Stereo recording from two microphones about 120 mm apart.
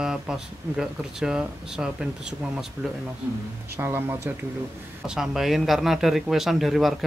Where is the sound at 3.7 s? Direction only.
20° right (ahead or behind).